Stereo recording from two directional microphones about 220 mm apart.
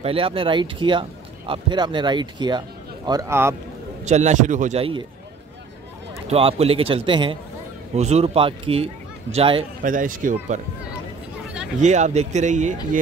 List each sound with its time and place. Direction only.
0.0 s speech: 25° right (ahead or behind)
4.0 s speech: 30° right (ahead or behind)
6.2 s speech: 25° right (ahead or behind)
9.8 s speech: 35° right (ahead or behind)
11.8 s speech: 30° right (ahead or behind)